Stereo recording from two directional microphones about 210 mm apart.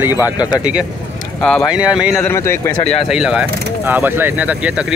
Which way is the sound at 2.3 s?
10° left (ahead or behind).